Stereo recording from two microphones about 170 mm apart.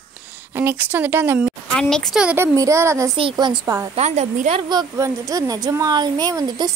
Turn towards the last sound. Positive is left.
turn(degrees=-25)  # may be behind; listen again after turning